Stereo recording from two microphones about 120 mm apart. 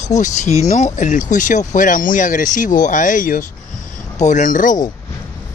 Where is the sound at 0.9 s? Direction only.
90° left.